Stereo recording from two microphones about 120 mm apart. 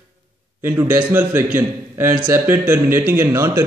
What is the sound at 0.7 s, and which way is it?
A man's voice, 20° right (ahead or behind).